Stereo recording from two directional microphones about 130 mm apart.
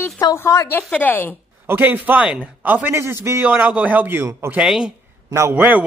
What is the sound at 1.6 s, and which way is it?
A man's voice, 15° right (ahead or behind).